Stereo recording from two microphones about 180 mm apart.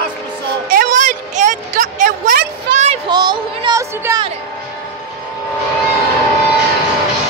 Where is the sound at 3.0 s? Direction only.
25° right (ahead or behind).